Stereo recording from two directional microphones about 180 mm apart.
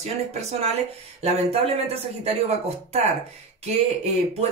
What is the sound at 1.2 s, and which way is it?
Speech, 35° right (ahead or behind).